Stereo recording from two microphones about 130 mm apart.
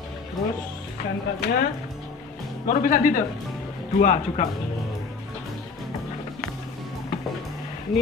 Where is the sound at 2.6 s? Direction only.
90° left.